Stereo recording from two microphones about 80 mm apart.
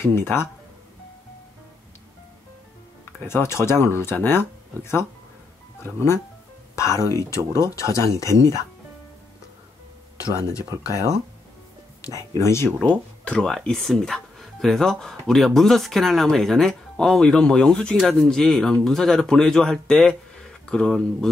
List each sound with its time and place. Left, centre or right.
0.1 s speech: left
3.3 s speech: left
6.7 s speech: left
10.2 s speech: left
12.4 s speech: left
12.8 s speech: centre
13.5 s speech: centre